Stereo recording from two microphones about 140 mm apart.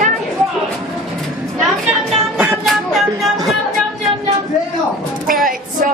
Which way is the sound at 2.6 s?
Centre (ahead or behind).